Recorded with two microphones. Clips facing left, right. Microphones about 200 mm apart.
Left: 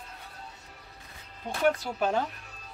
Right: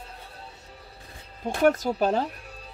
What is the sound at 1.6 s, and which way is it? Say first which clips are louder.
Speech: right 5 dB; 40° right (ahead or behind).